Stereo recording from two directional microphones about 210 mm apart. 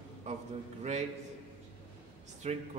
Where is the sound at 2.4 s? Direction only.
30° right (ahead or behind).